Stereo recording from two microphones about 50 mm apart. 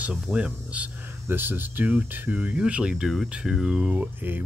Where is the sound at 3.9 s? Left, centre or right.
Right.